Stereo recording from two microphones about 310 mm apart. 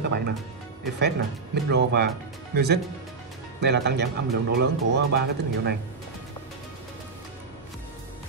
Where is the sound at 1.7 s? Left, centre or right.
Right.